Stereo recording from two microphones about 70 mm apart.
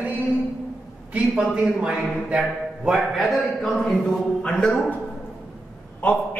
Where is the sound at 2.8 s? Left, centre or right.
Centre.